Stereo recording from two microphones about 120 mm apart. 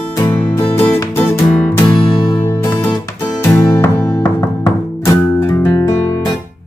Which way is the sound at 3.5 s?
15° left (ahead or behind).